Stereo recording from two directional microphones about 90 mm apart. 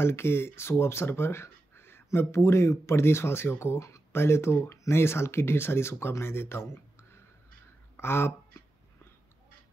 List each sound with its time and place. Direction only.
0.0 s speech: 25° left (ahead or behind)
8.0 s speech: 25° left (ahead or behind)